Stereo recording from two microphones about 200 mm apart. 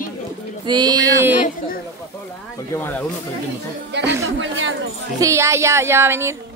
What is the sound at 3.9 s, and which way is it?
Speech, 60° right (ahead or behind).